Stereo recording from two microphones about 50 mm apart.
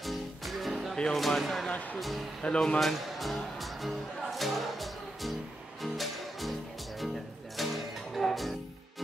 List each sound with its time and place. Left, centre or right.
0.0 s music: centre
1.1 s speech: centre
1.7 s speech: left
2.0 s speech: centre
2.4 s speech: left
2.8 s speech: centre
5.8 s music: centre
7.5 s music: centre